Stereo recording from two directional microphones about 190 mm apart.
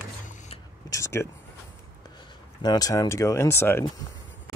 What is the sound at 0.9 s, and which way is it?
Speech, 15° left (ahead or behind).